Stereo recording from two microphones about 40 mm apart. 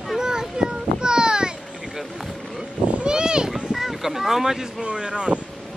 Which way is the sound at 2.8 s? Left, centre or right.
Right.